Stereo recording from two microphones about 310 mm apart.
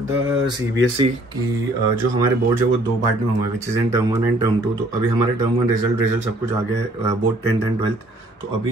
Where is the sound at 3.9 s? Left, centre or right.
Centre.